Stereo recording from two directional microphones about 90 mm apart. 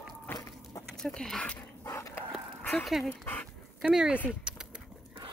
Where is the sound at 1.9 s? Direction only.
30° left (ahead or behind).